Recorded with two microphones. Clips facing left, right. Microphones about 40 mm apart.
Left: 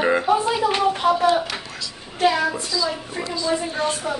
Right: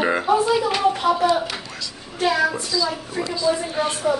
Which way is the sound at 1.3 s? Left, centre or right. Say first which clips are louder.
Left 1 dB; centre.